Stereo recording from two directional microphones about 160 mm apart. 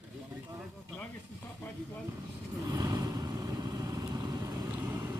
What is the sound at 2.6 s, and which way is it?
Vehicle, 25° right (ahead or behind).